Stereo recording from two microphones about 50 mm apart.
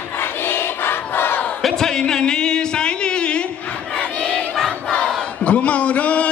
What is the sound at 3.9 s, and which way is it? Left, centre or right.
Battle cry, left.